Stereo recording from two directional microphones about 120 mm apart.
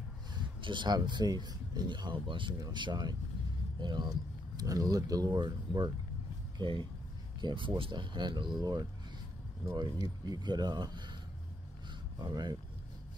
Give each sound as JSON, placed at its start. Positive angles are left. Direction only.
{"t": 0.3, "sound": "speech", "side_deg": -40}
{"t": 10.0, "sound": "speech", "side_deg": -35}
{"t": 12.2, "sound": "speech", "side_deg": -40}